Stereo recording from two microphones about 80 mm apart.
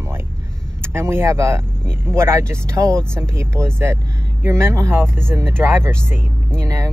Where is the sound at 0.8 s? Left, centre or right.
Right.